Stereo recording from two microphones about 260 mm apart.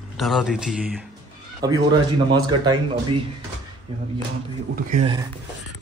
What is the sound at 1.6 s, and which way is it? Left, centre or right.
Speech, centre.